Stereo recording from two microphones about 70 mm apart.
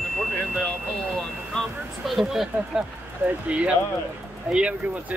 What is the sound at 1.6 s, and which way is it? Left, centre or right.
Speech, centre.